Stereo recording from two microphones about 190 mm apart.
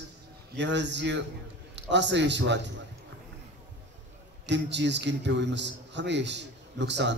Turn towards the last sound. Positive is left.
turn(degrees=-65)  # may be behind; listen again after turning